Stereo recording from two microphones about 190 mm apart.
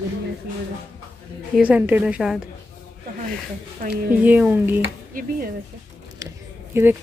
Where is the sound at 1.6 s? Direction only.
10° right (ahead or behind).